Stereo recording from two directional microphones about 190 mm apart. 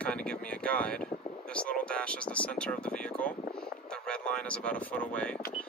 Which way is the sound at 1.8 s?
5° left (ahead or behind).